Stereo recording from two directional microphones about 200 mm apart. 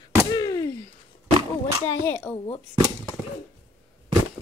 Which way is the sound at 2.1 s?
10° left (ahead or behind).